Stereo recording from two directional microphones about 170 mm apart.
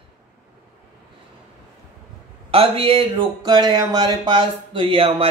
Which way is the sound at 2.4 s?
35° right (ahead or behind).